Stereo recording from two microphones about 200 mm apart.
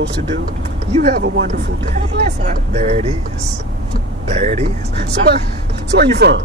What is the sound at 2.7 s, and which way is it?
Speech, 35° right (ahead or behind).